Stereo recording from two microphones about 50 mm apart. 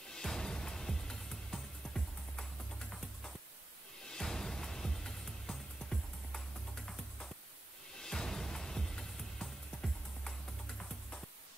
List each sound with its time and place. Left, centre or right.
0.1 s music: centre
8.0 s music: centre
10.8 s music: centre